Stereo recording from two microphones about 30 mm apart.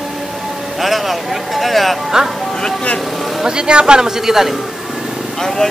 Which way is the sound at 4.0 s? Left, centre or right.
Centre.